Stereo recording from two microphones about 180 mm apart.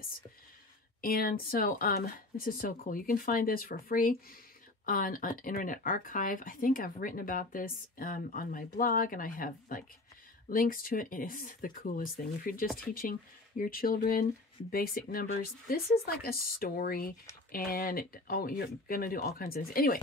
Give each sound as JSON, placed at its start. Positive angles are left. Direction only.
{"t": 1.0, "sound": "speech", "side_deg": 55}